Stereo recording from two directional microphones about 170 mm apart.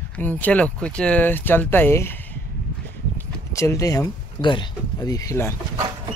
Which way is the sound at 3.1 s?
15° left (ahead or behind).